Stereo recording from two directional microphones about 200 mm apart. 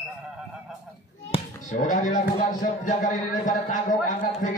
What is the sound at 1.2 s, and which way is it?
Speech, 30° left (ahead or behind).